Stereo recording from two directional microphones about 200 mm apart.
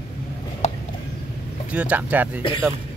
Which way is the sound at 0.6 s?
35° left (ahead or behind).